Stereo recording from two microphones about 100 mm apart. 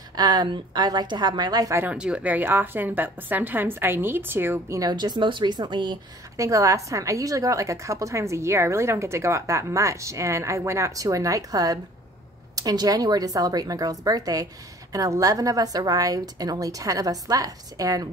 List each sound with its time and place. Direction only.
0.1 s a woman's voice: 45° right (ahead or behind)
1.9 s a woman's voice: 10° right (ahead or behind)
4.7 s a woman's voice: 45° right (ahead or behind)
6.3 s a woman's voice: 35° right (ahead or behind)